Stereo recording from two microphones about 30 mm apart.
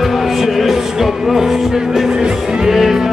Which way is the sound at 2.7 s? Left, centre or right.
Centre.